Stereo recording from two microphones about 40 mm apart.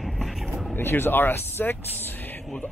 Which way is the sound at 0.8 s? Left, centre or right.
Left.